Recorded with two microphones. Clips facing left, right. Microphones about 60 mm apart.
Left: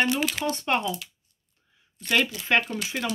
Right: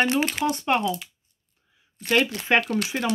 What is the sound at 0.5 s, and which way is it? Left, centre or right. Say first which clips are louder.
Speech: right 3 dB; centre.